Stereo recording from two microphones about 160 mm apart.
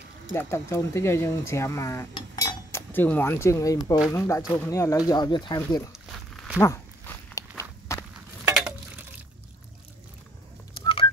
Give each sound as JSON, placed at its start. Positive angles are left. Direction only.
{"t": 0.3, "sound": "speech", "side_deg": 15}
{"t": 6.3, "sound": "walk", "side_deg": 0}
{"t": 6.6, "sound": "walk", "side_deg": 15}
{"t": 8.5, "sound": "a sound", "side_deg": -10}